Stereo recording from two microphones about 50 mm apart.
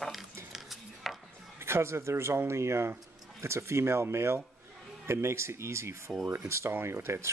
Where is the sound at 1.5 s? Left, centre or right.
Right.